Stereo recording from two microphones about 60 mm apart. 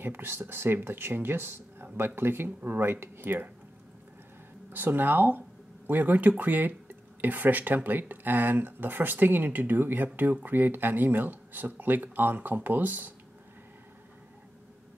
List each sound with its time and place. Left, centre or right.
0.0 s speech: right
4.6 s speech: right